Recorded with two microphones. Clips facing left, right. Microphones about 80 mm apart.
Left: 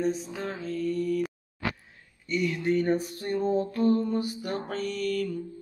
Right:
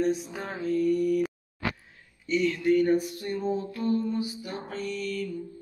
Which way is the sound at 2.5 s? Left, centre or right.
Left.